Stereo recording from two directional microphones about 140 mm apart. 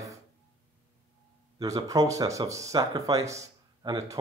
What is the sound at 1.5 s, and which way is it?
Speech, 25° right (ahead or behind).